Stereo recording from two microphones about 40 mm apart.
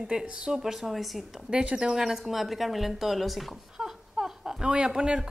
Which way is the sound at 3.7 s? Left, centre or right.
Centre.